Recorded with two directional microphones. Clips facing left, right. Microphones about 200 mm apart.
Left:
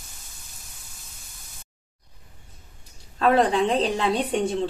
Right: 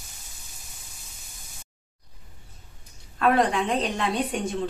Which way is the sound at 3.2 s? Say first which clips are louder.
Left 2 dB; 30° left (ahead or behind).